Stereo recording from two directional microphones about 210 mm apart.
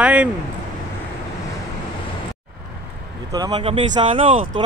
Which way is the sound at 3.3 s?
20° right (ahead or behind).